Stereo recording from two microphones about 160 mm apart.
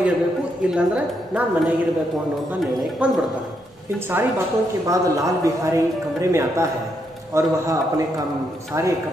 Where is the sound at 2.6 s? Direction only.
Centre (ahead or behind).